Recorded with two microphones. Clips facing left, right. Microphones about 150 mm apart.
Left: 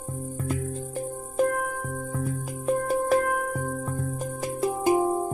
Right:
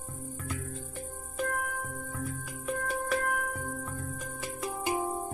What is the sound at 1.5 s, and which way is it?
Music, 40° left (ahead or behind).